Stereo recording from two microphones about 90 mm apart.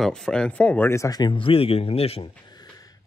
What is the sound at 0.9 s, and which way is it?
Speech, 35° left (ahead or behind).